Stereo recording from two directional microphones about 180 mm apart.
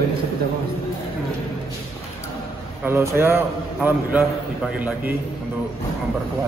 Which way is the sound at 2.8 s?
15° right (ahead or behind).